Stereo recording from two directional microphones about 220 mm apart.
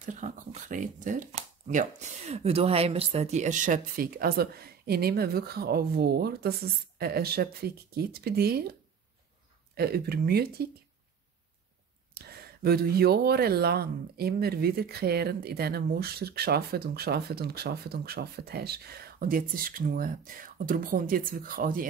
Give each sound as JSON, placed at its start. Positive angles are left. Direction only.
{"t": 0.0, "sound": "speech", "side_deg": -35}
{"t": 9.8, "sound": "speech", "side_deg": -45}
{"t": 12.1, "sound": "speech", "side_deg": -45}